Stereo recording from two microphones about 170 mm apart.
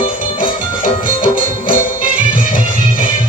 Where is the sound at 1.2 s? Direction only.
55° left (ahead or behind).